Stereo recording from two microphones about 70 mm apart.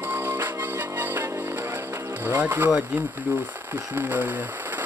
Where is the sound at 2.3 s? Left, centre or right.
Right.